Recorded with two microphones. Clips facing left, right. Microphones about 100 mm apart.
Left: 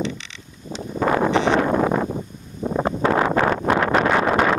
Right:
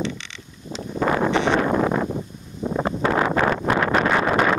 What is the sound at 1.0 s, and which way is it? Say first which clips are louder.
Wind noise: left 2 dB; 35° left (ahead or behind).